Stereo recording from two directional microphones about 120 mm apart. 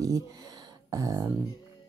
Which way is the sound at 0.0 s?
30° right (ahead or behind).